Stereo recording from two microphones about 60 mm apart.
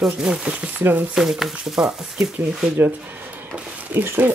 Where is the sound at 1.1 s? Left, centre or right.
Centre.